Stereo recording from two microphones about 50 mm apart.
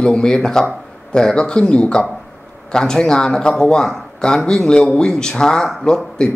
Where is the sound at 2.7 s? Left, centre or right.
Centre.